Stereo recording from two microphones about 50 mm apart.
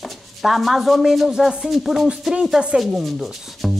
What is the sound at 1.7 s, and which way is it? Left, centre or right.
Speech, centre.